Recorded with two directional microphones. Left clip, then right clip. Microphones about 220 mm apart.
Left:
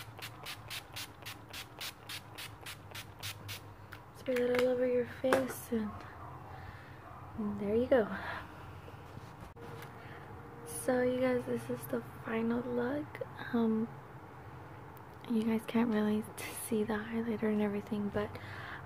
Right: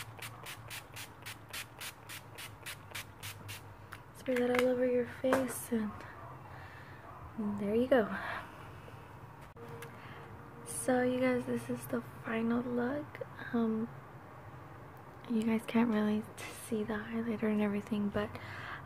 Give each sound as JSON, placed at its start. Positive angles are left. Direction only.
{"t": 0.2, "sound": "a sound", "side_deg": 15}
{"t": 1.8, "sound": "spray", "side_deg": 20}
{"t": 2.6, "sound": "music", "side_deg": 0}
{"t": 3.2, "sound": "a sound", "side_deg": 20}
{"t": 4.3, "sound": "a woman's voice", "side_deg": 0}
{"t": 7.6, "sound": "speech", "side_deg": -5}
{"t": 10.9, "sound": "a woman's voice", "side_deg": -5}
{"t": 15.2, "sound": "speech", "side_deg": -5}
{"t": 16.3, "sound": "a woman's voice", "side_deg": 5}